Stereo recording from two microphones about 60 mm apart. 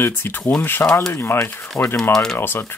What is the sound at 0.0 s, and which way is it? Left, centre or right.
Speech, left.